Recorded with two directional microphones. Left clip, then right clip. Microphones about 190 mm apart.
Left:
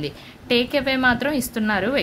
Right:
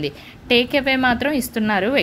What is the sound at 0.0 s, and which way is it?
Speech, 15° right (ahead or behind).